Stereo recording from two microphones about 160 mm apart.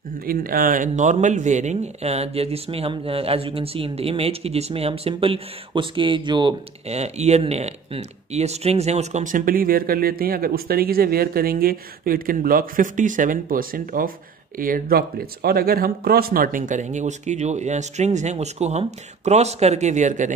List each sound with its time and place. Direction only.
0.3 s speech: 65° right (ahead or behind); by 6.5 s 30° right (ahead or behind)
6.9 s speech: 40° right (ahead or behind)